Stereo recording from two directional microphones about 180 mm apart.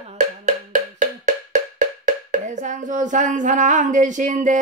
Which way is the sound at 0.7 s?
45° right (ahead or behind).